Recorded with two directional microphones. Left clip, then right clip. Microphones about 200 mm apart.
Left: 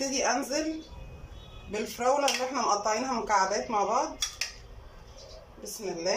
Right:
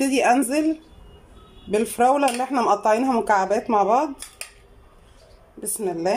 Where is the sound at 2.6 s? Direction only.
60° right (ahead or behind).